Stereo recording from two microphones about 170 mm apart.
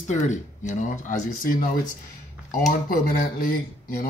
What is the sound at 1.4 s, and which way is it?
Speech, 55° left (ahead or behind).